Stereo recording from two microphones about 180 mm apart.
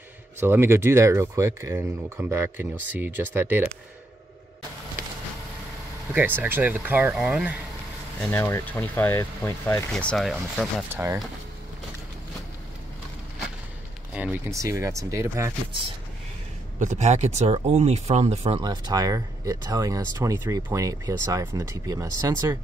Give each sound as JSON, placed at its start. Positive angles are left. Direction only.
{"t": 0.4, "sound": "speech", "side_deg": -15}
{"t": 6.1, "sound": "speech", "side_deg": -10}
{"t": 8.2, "sound": "speech", "side_deg": 10}
{"t": 10.9, "sound": "speech", "side_deg": -10}
{"t": 14.5, "sound": "speech", "side_deg": -15}
{"t": 16.8, "sound": "speech", "side_deg": -40}
{"t": 18.6, "sound": "speech", "side_deg": -25}